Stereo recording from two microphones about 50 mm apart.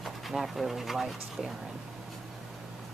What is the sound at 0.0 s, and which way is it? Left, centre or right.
Speech, centre.